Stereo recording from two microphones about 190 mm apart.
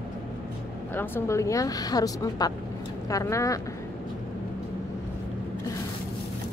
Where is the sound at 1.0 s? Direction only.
15° left (ahead or behind).